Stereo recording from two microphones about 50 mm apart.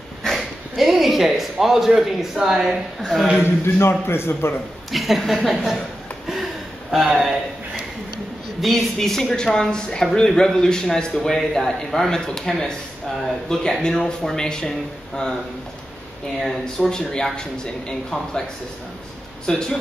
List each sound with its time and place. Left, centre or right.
0.3 s a man's voice: centre
3.1 s a woman's voice: centre
3.4 s a man's voice: left
4.9 s a woman's voice: centre
7.1 s a man's voice: centre
8.5 s speech: centre
16.3 s speech: centre
19.4 s speech: centre